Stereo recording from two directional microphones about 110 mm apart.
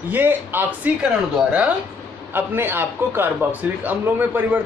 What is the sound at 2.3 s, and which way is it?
Speech, 20° right (ahead or behind).